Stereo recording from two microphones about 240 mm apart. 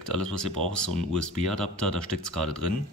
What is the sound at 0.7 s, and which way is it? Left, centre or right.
Speech, right.